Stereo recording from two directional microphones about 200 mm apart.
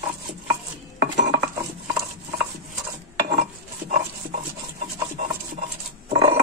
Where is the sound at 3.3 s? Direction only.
35° right (ahead or behind).